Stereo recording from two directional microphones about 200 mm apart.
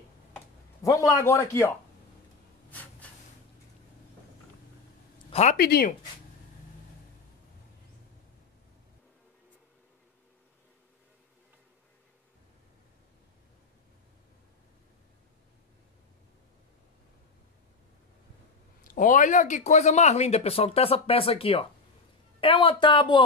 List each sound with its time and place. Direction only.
0.8 s a man's voice: 15° left (ahead or behind)
2.7 s snort: 10° left (ahead or behind)
5.3 s speech: 35° left (ahead or behind)
5.6 s speech: 50° left (ahead or behind)
18.9 s speech: 40° left (ahead or behind); by 23.2 s 25° left (ahead or behind)